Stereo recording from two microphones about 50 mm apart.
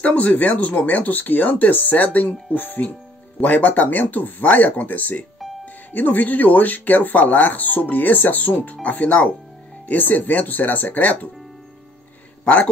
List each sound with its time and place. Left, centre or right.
0.0 s speech: left